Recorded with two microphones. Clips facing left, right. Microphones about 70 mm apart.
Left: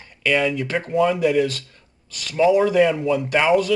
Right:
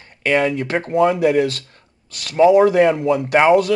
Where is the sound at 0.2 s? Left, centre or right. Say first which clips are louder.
Right 3 dB; right.